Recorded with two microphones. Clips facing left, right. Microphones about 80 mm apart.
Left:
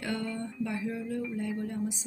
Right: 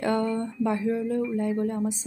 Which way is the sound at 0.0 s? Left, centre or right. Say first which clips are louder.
Right 9 dB; right.